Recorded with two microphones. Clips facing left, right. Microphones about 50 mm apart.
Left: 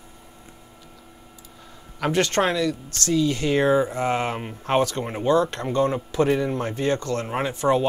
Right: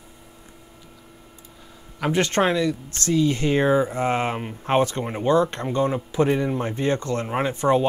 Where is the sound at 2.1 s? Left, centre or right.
Right.